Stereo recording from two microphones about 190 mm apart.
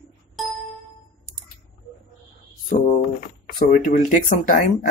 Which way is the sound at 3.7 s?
40° left (ahead or behind).